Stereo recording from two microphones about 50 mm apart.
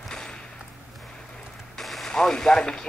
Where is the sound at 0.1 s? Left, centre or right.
Centre.